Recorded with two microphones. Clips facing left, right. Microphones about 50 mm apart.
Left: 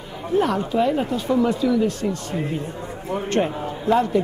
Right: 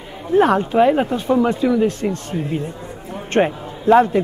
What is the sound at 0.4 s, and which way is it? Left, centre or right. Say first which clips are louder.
Speech: right 6 dB; right.